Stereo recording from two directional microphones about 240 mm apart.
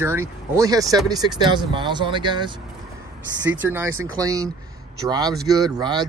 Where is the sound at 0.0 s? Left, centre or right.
Centre.